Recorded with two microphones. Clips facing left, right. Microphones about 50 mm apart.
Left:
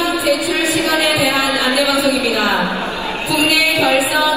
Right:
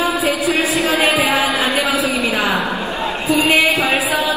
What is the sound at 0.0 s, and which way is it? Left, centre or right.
Music, right.